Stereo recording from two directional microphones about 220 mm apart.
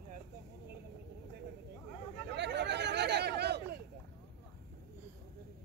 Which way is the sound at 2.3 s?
50° right (ahead or behind).